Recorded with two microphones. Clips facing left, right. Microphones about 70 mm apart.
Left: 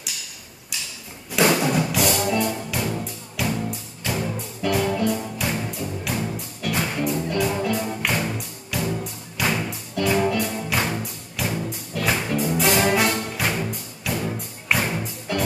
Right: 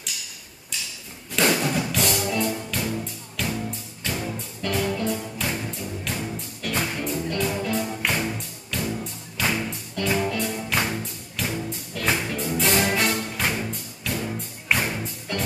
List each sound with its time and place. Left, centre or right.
1.6 s music: centre
10.8 s music: centre